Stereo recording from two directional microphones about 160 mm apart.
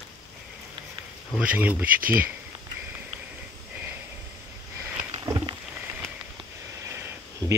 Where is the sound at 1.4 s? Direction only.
10° right (ahead or behind).